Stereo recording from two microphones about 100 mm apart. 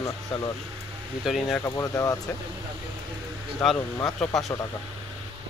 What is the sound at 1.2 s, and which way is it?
Speech, centre (ahead or behind).